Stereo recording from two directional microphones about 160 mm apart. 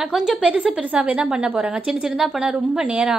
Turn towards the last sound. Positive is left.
turn(degrees=-5)  # may be behind; listen again after turning